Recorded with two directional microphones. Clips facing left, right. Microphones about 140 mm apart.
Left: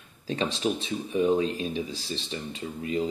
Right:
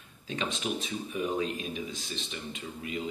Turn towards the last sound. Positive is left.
turn(degrees=35)  # may be behind; listen again after turning